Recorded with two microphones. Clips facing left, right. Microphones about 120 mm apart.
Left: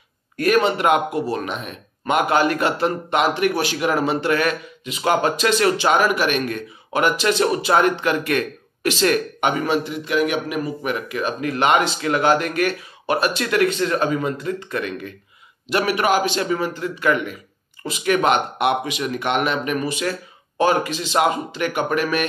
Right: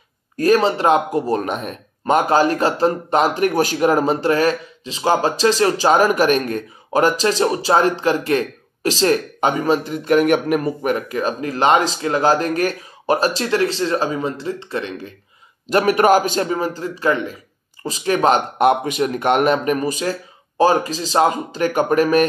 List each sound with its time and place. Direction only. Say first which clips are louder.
0.4 s speech: right 2 dB; 35° right (ahead or behind)
1.2 s speech: right 4 dB; 40° right (ahead or behind)
15.7 s speech: right 5 dB; 40° right (ahead or behind)